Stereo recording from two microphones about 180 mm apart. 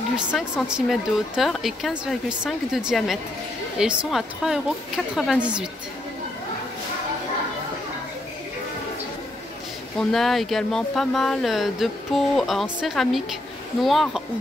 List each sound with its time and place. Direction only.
0.1 s speech: 5° right (ahead or behind)
9.9 s speech: centre (ahead or behind)